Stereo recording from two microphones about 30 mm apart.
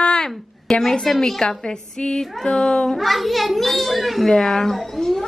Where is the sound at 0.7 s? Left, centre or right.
Centre.